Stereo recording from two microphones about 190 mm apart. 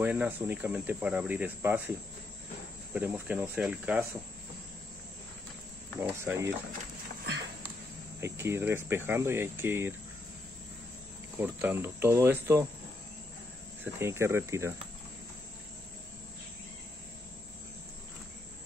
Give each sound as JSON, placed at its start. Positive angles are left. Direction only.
{"t": 0.0, "sound": "speech", "side_deg": -10}
{"t": 2.9, "sound": "speech", "side_deg": -10}
{"t": 5.9, "sound": "speech", "side_deg": -15}
{"t": 8.2, "sound": "speech", "side_deg": -15}
{"t": 11.3, "sound": "speech", "side_deg": -10}
{"t": 13.9, "sound": "speech", "side_deg": -15}